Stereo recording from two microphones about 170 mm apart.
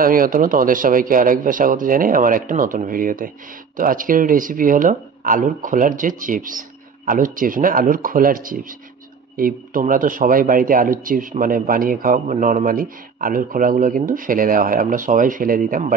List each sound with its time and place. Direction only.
0.0 s speech: 55° right (ahead or behind)